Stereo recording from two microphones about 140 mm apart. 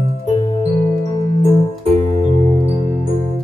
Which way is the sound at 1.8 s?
50° right (ahead or behind).